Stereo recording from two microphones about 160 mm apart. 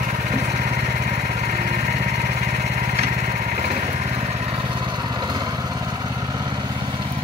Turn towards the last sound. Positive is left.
turn(degrees=-25)  # may be behind; listen again after turning